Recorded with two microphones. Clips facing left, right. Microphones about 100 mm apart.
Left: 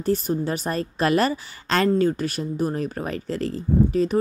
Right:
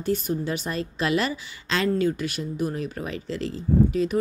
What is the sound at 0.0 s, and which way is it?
A woman's voice, 40° left (ahead or behind).